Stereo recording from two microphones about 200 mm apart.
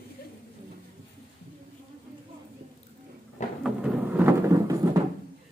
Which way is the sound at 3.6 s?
5° right (ahead or behind).